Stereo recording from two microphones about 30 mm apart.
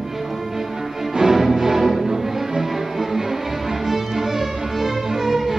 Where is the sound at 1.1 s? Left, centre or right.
Centre.